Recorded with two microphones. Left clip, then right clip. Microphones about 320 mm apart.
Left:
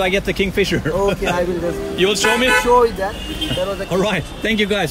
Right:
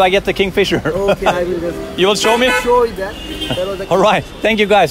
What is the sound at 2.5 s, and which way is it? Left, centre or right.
Speech, centre.